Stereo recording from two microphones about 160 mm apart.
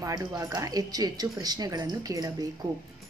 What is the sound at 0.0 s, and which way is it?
Speech, 20° right (ahead or behind).